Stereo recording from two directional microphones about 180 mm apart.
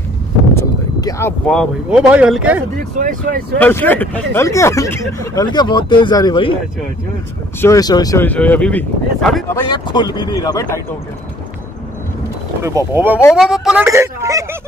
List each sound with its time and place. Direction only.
0.6 s a sound: 15° left (ahead or behind)
1.5 s speech: centre (ahead or behind)
3.0 s speech: 45° right (ahead or behind)
3.5 s speech: 10° left (ahead or behind)
7.6 s speech: 20° left (ahead or behind)
8.3 s speech: 10° left (ahead or behind)
9.5 s speech: 25° left (ahead or behind)
12.6 s speech: 15° right (ahead or behind)
13.8 s speech: 15° right (ahead or behind)